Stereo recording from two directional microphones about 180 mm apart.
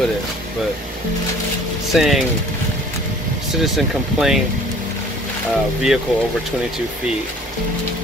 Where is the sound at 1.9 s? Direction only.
Centre (ahead or behind).